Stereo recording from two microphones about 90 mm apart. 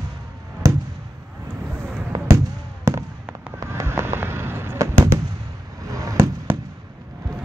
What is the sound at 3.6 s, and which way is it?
Fireworks, 30° right (ahead or behind).